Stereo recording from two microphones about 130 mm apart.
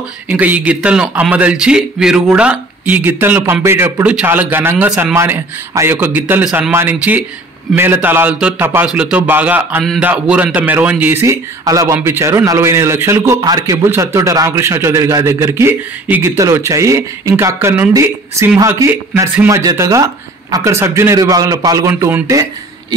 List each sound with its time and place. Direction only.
0.3 s a man's voice: 10° right (ahead or behind); by 22.9 s 30° right (ahead or behind)